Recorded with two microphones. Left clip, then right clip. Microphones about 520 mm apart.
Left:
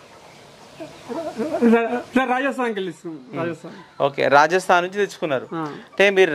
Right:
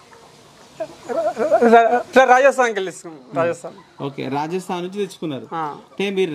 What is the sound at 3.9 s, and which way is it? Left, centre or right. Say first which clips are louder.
Speech: left 10 dB; left.